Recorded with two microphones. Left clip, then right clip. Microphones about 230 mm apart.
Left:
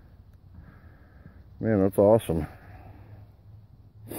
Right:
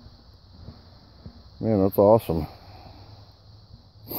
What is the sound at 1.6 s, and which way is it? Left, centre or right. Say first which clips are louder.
Speech: right 2 dB; centre.